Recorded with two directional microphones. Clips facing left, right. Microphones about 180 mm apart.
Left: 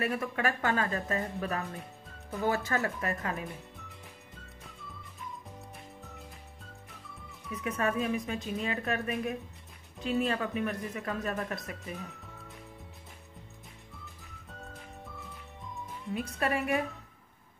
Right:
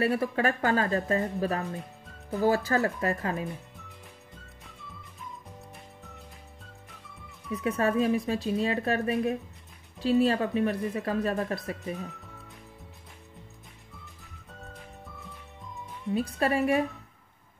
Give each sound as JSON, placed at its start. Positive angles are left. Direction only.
{"t": 0.0, "sound": "speech", "side_deg": -30}
{"t": 7.6, "sound": "speech", "side_deg": -35}
{"t": 14.5, "sound": "music", "side_deg": 0}
{"t": 16.2, "sound": "speech", "side_deg": -30}